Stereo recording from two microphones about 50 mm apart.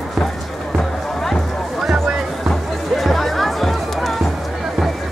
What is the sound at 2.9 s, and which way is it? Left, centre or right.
Music, centre.